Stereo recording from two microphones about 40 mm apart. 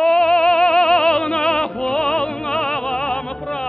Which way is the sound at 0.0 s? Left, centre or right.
Centre.